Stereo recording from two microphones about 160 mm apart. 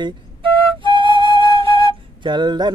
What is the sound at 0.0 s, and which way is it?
Flute, 30° right (ahead or behind).